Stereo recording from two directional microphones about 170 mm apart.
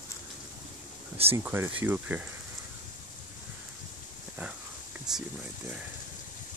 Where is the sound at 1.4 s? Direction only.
10° right (ahead or behind).